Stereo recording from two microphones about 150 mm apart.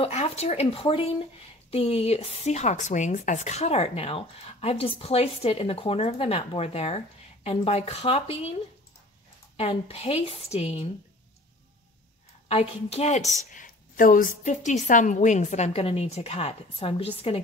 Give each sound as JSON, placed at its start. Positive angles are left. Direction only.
{"t": 0.0, "sound": "a woman's voice", "side_deg": 45}
{"t": 9.6, "sound": "a woman's voice", "side_deg": 40}
{"t": 12.4, "sound": "speech", "side_deg": 45}
{"t": 13.5, "sound": "speech", "side_deg": 65}